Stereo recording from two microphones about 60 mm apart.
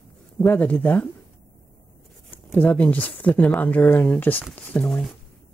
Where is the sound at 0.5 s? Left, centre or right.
Left.